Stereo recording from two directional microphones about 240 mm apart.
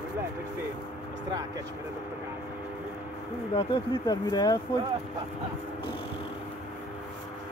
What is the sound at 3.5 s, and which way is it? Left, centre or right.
Speech, centre.